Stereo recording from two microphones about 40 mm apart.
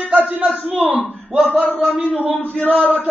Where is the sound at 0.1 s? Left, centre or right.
Right.